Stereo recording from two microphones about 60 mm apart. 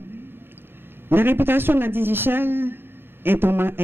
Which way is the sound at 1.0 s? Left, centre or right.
Right.